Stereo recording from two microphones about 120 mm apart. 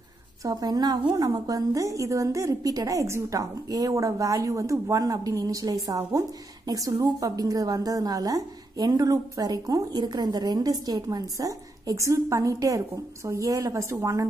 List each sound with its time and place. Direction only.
0.4 s a woman's voice: 30° right (ahead or behind)